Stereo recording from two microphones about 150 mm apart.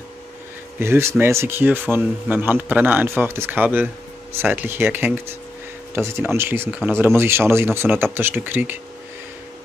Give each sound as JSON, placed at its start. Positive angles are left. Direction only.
{"t": 0.7, "sound": "speech", "side_deg": -15}